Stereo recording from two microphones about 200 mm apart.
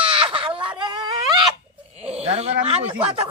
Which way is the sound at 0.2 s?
25° right (ahead or behind).